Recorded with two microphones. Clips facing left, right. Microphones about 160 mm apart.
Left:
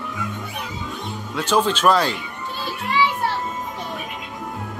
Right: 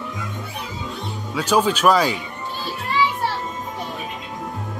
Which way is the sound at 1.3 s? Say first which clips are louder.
Right 1 dB; 10° right (ahead or behind).